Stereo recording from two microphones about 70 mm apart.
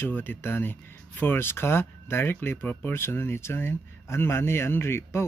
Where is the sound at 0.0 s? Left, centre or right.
Left.